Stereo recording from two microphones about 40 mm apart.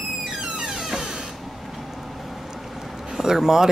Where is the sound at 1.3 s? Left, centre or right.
Centre.